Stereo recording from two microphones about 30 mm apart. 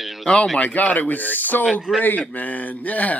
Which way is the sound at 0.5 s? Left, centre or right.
Left.